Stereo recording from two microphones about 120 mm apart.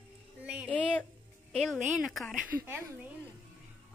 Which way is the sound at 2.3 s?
10° right (ahead or behind).